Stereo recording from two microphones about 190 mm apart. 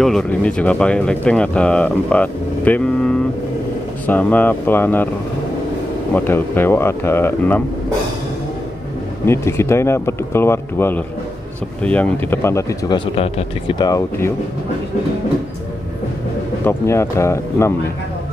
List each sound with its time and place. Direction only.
0.0 s speech: 5° left (ahead or behind)
6.1 s speech: 10° left (ahead or behind)
9.2 s speech: 15° left (ahead or behind)
16.6 s speech: 15° left (ahead or behind)